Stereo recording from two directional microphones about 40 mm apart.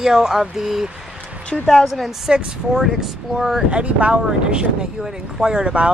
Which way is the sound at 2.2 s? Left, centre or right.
Centre.